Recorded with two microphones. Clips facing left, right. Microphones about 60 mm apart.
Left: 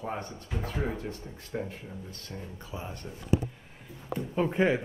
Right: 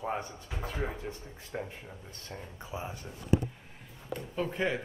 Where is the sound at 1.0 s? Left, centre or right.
Centre.